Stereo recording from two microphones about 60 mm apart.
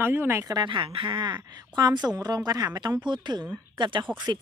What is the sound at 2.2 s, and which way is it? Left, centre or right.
Speech, right.